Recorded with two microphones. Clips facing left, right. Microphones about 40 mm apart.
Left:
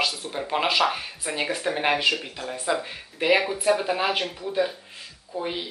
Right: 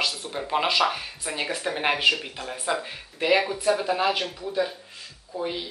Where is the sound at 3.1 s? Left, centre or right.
Centre.